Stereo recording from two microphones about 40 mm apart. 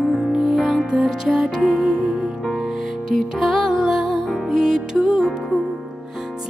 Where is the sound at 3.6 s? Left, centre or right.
Centre.